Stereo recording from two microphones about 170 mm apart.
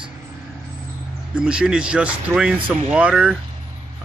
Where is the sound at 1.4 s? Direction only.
5° right (ahead or behind).